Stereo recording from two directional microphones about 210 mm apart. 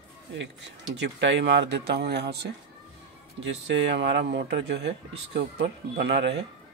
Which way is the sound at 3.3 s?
55° right (ahead or behind).